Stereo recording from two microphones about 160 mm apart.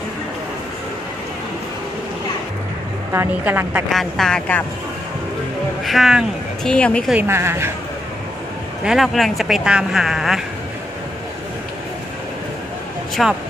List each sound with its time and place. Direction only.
3.1 s speech: 15° right (ahead or behind)
3.9 s speech: centre (ahead or behind)
5.9 s speech: centre (ahead or behind)
7.2 s speech: 15° right (ahead or behind)
8.8 s speech: centre (ahead or behind)
13.1 s speech: centre (ahead or behind)